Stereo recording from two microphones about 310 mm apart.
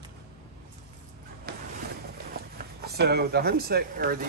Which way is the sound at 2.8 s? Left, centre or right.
Right.